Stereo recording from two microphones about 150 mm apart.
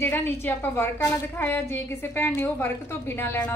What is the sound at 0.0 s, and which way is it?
A woman's voice, 15° left (ahead or behind).